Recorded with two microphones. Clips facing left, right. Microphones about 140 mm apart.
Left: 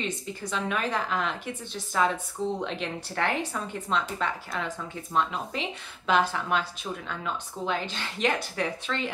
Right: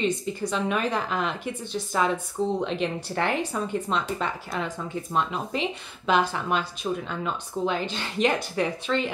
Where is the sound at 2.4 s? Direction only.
30° right (ahead or behind).